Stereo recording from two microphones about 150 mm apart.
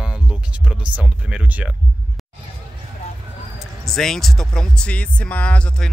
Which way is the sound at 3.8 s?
5° left (ahead or behind).